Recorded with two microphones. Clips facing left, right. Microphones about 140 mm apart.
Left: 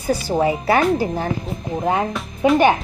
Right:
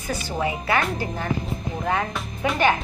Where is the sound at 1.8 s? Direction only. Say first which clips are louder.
Left 5 dB; 25° left (ahead or behind).